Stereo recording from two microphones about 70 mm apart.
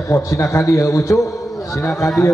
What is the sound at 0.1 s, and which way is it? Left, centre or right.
A man's voice, left.